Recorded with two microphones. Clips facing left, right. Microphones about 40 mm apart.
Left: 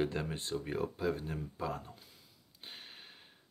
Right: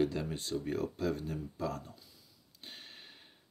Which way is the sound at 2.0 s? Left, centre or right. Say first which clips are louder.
Left 1 dB; left.